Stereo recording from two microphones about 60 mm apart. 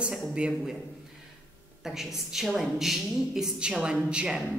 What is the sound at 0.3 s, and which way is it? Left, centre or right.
Speech, centre.